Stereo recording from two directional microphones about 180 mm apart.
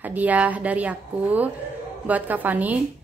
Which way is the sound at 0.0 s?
10° right (ahead or behind).